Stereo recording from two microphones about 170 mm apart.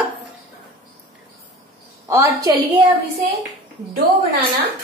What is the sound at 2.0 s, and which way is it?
Speech, 15° right (ahead or behind).